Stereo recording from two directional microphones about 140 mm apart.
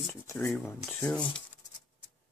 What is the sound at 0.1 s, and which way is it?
Speech, 20° left (ahead or behind).